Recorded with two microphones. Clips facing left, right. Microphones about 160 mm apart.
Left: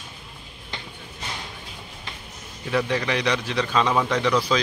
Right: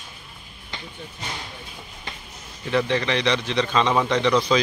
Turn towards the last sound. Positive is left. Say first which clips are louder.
# right 2 dB
turn(degrees=5)  # may be behind; listen again after turning